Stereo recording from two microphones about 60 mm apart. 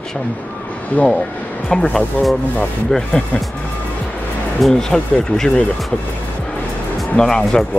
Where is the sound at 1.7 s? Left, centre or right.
Centre.